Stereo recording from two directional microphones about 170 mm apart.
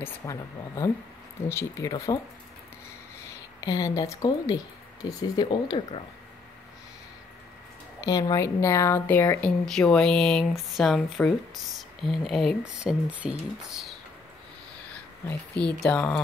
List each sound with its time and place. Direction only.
0.0 s speech: 20° left (ahead or behind)
3.3 s speech: 20° left (ahead or behind)
8.0 s speech: 20° left (ahead or behind); by 13.9 s 5° right (ahead or behind)
15.6 s speech: 5° left (ahead or behind)